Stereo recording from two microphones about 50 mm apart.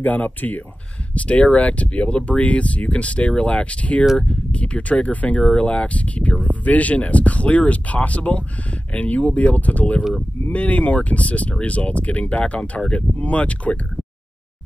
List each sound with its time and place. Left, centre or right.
0.0 s speech: left